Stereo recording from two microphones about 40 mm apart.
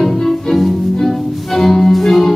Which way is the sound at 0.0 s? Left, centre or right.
Centre.